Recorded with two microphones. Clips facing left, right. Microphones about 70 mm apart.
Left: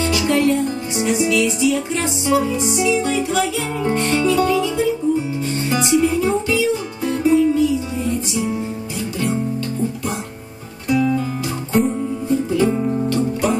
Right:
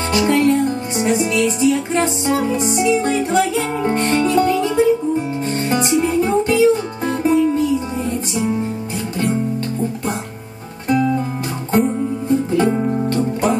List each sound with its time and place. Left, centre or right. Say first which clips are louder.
0.1 s music: right 4 dB; right
10.9 s music: right 1 dB; right
12.3 s music: right 1 dB; right